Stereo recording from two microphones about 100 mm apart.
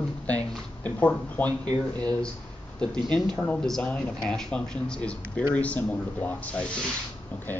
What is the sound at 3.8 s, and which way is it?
Speech, 10° left (ahead or behind).